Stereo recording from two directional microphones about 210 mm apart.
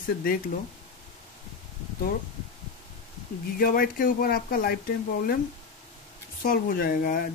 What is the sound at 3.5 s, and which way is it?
Speech, 45° left (ahead or behind).